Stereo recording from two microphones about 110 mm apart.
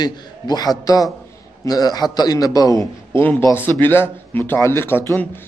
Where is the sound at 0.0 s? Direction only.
40° left (ahead or behind).